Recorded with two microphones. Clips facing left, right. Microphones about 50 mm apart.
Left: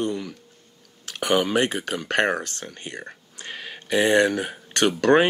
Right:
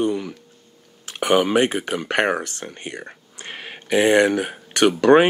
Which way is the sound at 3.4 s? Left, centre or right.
Right.